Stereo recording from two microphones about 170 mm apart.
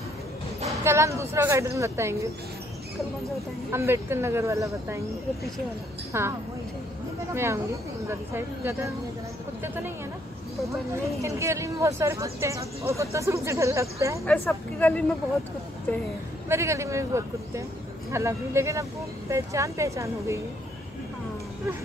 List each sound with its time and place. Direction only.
0.8 s speech: 15° right (ahead or behind)
3.7 s speech: 15° right (ahead or behind)
7.3 s speech: 15° right (ahead or behind)
11.1 s speech: 15° right (ahead or behind)
14.2 s speech: 10° left (ahead or behind)
16.4 s speech: 15° right (ahead or behind)